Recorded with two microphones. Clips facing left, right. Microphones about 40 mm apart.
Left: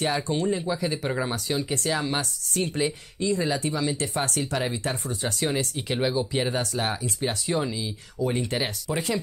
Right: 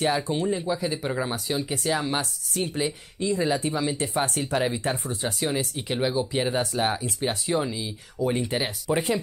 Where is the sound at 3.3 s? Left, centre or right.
Centre.